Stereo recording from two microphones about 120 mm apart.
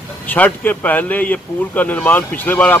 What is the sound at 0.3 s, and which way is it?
Speech, 15° left (ahead or behind).